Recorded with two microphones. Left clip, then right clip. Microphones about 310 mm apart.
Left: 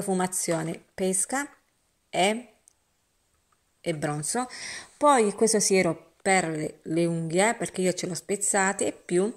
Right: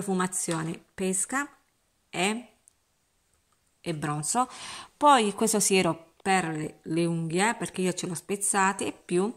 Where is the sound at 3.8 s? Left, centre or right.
Centre.